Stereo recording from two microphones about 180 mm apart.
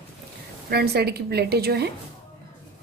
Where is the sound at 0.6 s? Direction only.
65° right (ahead or behind).